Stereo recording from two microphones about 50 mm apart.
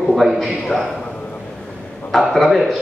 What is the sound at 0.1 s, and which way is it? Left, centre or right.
Speech, centre.